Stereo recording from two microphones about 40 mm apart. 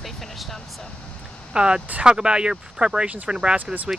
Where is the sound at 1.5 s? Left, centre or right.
Right.